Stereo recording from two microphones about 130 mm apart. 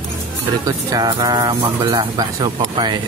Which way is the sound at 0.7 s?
30° right (ahead or behind).